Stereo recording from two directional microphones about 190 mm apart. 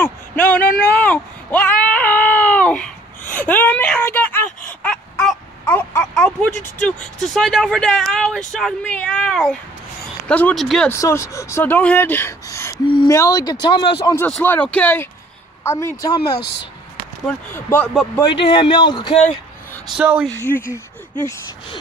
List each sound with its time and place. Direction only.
0.0 s a sound: 10° left (ahead or behind)
3.3 s whimper: 10° left (ahead or behind)
4.8 s speech: 5° left (ahead or behind)
10.9 s speech: 15° left (ahead or behind)
17.3 s speech: 10° left (ahead or behind)
18.3 s speech: 25° left (ahead or behind)
20.0 s speech: 10° right (ahead or behind)
20.3 s speech: 10° left (ahead or behind)